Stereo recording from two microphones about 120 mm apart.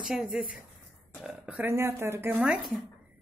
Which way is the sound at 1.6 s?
20° right (ahead or behind).